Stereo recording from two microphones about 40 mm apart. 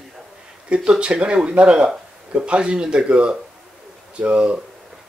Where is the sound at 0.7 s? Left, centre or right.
Right.